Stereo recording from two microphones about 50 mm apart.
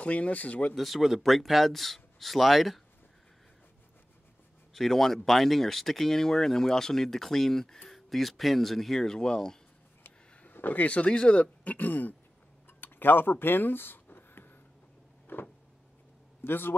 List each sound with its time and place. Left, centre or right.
0.0 s speech: left
0.7 s speech: centre
4.7 s speech: centre
10.5 s speech: left
11.6 s a man's voice: left
12.6 s a sound: left
15.3 s power windows: left
16.4 s a man's voice: left